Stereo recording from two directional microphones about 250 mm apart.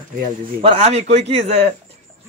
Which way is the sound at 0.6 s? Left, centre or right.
Right.